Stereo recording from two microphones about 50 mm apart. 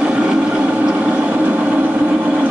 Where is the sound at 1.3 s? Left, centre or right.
Right.